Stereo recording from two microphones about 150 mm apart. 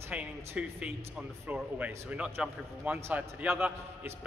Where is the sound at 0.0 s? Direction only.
10° right (ahead or behind).